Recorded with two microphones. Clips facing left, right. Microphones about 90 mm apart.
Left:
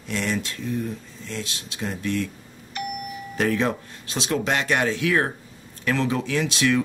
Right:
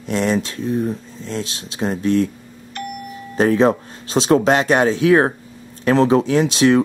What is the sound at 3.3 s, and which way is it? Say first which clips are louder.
Speech: right 8 dB; 35° right (ahead or behind).